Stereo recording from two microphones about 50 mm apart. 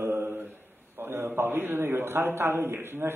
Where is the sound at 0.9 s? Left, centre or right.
Right.